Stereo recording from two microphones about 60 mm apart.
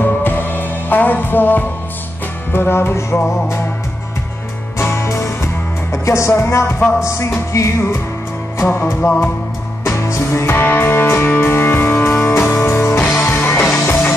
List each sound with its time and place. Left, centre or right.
0.0 s music: left
4.7 s music: left
7.5 s music: left
8.5 s music: left
9.9 s music: left
12.5 s music: left
13.3 s music: left